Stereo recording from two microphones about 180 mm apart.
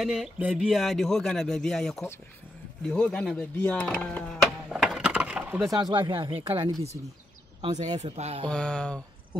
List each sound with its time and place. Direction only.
0.0 s speech: 5° right (ahead or behind)
5.9 s speech: 25° right (ahead or behind)
8.0 s speech: 35° right (ahead or behind)
8.5 s speech: 5° left (ahead or behind)